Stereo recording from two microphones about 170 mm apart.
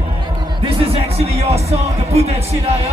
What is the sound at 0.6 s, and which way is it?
Speech, 35° right (ahead or behind).